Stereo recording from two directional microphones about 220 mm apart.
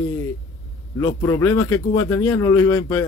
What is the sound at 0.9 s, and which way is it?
A man's voice, 15° left (ahead or behind).